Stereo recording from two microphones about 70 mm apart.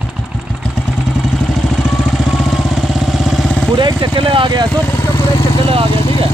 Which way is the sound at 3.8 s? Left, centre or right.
Right.